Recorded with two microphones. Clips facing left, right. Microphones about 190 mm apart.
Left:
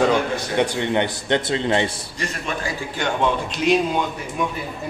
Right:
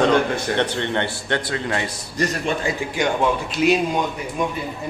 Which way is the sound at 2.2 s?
40° right (ahead or behind).